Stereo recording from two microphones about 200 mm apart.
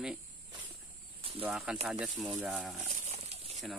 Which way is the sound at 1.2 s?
25° right (ahead or behind).